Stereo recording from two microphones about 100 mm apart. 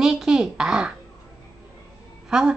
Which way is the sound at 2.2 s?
5° right (ahead or behind).